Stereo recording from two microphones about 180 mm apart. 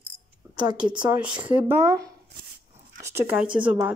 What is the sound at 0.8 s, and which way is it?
Speech, 25° right (ahead or behind).